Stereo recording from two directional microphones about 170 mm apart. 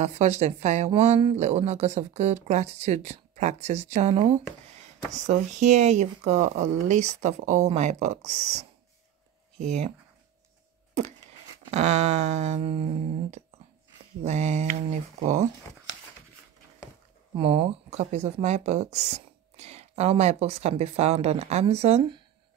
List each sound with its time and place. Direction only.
0.0 s speech: 40° right (ahead or behind)
11.7 s speech: 40° right (ahead or behind)
17.4 s speech: 35° right (ahead or behind)